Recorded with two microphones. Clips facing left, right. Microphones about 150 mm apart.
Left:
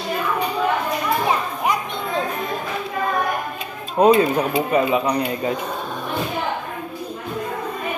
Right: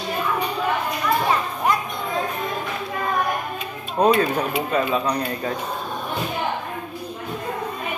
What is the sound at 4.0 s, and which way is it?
Speech, 20° left (ahead or behind).